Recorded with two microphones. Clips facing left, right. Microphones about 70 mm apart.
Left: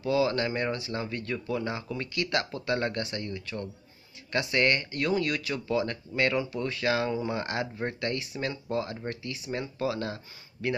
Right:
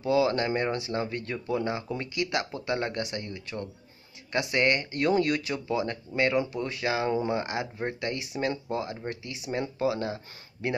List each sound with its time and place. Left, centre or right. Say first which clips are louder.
0.0 s speech: right 2 dB; right
7.1 s speech: right 3 dB; right
7.3 s speech: right 1 dB; centre